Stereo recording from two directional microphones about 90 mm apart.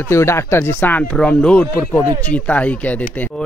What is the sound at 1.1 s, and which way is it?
A man's voice, 10° left (ahead or behind).